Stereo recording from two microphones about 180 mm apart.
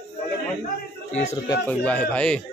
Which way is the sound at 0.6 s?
40° left (ahead or behind).